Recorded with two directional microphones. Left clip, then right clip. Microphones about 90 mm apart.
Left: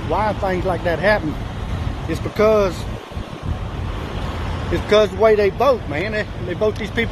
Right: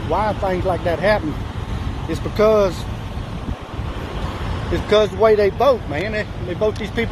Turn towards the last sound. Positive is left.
turn(degrees=30)  # may be behind; listen again after turning